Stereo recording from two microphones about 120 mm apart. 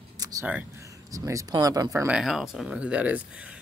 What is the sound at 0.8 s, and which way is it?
Speech, 25° right (ahead or behind).